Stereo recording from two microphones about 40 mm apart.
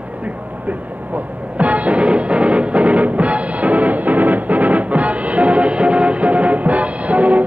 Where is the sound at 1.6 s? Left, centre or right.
Right.